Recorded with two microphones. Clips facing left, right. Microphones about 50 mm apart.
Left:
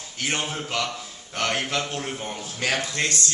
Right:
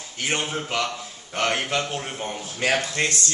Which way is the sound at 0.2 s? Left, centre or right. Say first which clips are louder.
Right 1 dB; centre.